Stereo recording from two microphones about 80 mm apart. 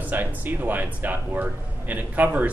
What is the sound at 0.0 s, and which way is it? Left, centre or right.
Speech, right.